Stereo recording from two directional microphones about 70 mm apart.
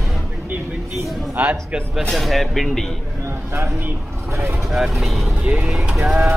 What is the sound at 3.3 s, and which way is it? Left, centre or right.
Speech, right.